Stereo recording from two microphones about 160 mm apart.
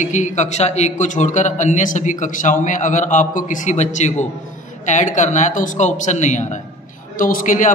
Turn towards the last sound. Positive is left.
turn(degrees=55)  # may be behind; listen again after turning